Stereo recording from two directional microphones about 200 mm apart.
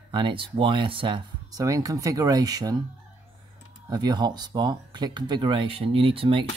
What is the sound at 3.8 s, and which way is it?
Speech, 20° right (ahead or behind).